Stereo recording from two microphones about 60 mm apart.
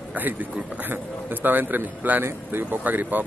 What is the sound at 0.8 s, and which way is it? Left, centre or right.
Speech, right.